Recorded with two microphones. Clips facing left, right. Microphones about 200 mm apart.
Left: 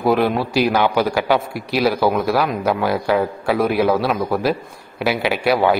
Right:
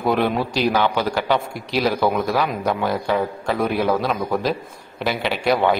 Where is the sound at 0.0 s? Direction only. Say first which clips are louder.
Left 3 dB; centre (ahead or behind).